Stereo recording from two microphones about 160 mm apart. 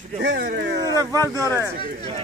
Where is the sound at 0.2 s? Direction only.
90° right.